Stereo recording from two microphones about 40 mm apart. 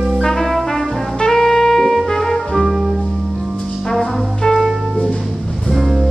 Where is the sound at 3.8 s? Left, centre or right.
Centre.